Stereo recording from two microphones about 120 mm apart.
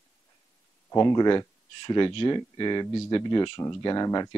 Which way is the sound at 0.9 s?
30° left (ahead or behind).